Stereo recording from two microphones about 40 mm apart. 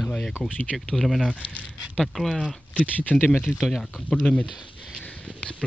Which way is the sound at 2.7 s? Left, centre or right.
Left.